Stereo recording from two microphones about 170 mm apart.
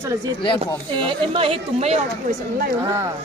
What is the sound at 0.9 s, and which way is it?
A woman's voice, 30° right (ahead or behind).